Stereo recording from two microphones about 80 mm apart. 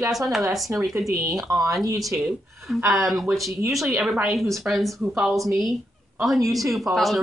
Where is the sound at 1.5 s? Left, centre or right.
Right.